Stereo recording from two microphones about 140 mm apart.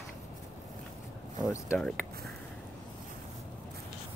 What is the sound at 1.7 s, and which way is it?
Speech, 5° left (ahead or behind).